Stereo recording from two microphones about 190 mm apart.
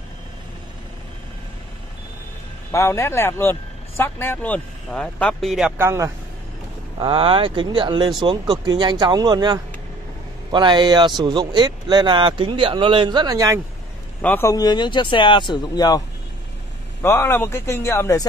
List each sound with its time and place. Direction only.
2.7 s speech: 15° left (ahead or behind)
5.8 s speech: 15° right (ahead or behind)
7.0 s speech: 25° right (ahead or behind)
14.2 s speech: 10° left (ahead or behind)
17.0 s speech: 15° left (ahead or behind)